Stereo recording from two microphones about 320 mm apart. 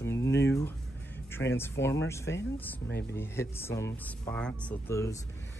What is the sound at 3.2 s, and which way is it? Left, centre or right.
Speech, centre.